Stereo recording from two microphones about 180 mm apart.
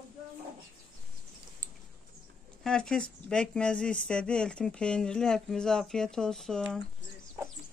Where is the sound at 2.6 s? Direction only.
5° left (ahead or behind).